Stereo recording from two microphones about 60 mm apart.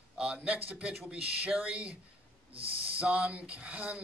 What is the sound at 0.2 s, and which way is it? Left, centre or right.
A man's voice, centre.